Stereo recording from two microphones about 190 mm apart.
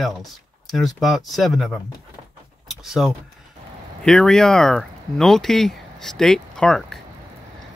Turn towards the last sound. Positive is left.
turn(degrees=5)  # may be behind; listen again after turning